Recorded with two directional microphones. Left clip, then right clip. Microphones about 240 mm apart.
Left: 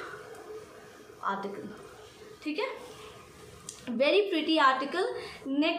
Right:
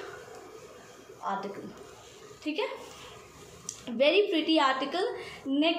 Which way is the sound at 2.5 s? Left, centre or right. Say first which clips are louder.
Right 1 dB; centre.